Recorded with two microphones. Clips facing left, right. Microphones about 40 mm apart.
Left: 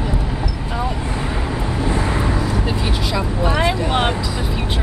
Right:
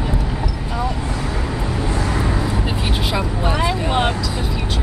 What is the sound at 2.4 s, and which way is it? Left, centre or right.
Vehicle, centre.